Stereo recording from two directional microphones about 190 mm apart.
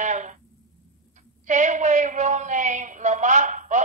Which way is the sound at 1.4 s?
40° right (ahead or behind).